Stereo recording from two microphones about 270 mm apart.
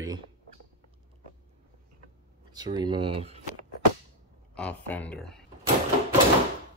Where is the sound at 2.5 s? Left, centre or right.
Centre.